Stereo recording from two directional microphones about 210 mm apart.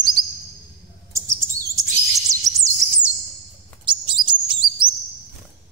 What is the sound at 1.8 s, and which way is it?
Chirp, 15° right (ahead or behind).